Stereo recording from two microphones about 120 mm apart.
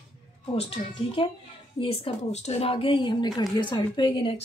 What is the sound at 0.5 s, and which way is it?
A woman's voice, 55° left (ahead or behind).